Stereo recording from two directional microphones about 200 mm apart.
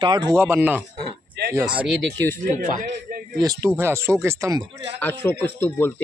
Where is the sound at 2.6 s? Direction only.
45° right (ahead or behind).